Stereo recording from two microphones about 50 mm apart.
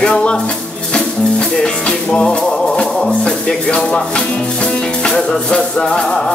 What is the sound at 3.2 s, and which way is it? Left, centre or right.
Speech, centre.